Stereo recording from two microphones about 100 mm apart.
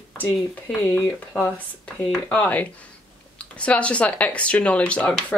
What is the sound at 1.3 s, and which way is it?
Speech, 20° left (ahead or behind).